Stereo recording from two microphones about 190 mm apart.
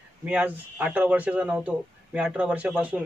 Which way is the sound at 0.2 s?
5° right (ahead or behind).